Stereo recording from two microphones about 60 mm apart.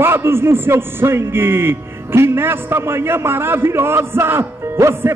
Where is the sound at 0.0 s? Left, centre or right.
Right.